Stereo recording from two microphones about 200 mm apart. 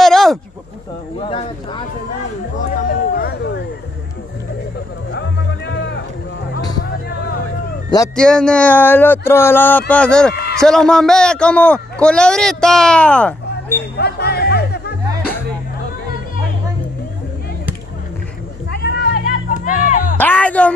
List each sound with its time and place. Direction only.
0.0 s a sound: centre (ahead or behind)
1.2 s speech: 25° left (ahead or behind)
2.7 s a sound: 45° left (ahead or behind)
5.1 s music: 60° left (ahead or behind)
6.8 s a sound: 55° left (ahead or behind)
8.2 s a man's voice: 5° left (ahead or behind)
13.9 s music: 55° left (ahead or behind)
18.7 s music: 55° left (ahead or behind)
20.2 s speech: 5° left (ahead or behind)